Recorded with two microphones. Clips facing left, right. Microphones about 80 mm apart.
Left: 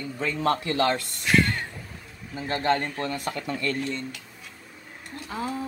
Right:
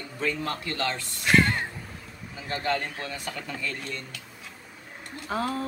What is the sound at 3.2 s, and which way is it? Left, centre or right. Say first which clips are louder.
Speech: left 5 dB; left.